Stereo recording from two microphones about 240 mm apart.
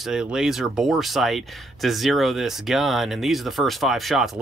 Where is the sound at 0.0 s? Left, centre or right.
Centre.